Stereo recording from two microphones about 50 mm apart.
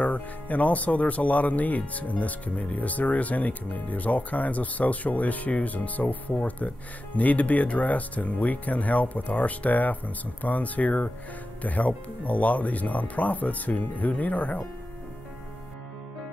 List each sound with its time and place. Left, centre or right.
0.0 s speech: left